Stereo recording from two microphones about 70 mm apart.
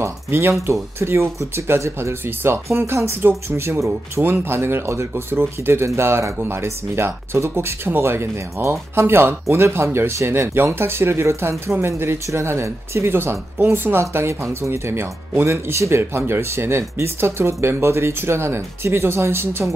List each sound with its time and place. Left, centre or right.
0.0 s speech: right